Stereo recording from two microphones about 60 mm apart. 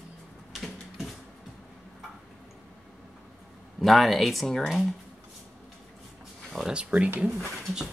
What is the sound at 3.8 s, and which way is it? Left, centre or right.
Speech, centre.